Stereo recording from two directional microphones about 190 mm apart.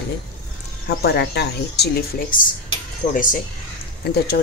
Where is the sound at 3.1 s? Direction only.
45° left (ahead or behind).